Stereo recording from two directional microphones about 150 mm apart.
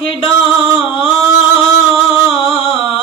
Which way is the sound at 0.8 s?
35° left (ahead or behind).